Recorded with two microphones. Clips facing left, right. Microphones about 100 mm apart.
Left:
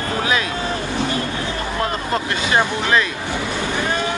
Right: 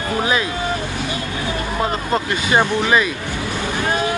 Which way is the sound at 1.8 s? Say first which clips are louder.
Right 2 dB; 10° right (ahead or behind).